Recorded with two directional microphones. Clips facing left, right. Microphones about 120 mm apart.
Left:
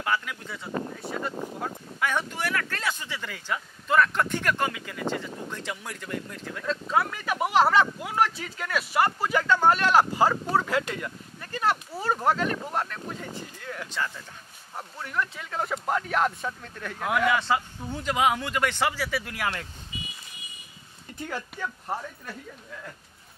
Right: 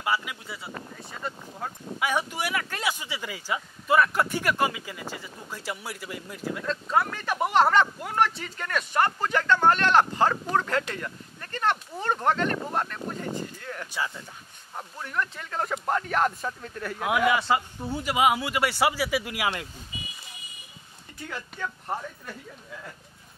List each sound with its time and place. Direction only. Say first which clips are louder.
0.0 s speech: even; 10° right (ahead or behind)
1.6 s speech: right 2 dB; 10° right (ahead or behind)
21.3 s speech: left 1 dB; 5° left (ahead or behind)